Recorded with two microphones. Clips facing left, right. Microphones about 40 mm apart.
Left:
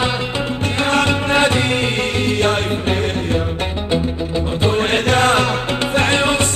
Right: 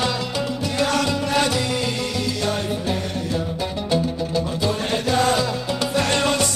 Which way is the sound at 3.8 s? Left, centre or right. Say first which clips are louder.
Left 2 dB; left.